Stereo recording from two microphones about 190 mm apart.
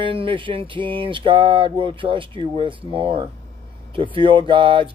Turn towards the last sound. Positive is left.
turn(degrees=-25)  # may be behind; listen again after turning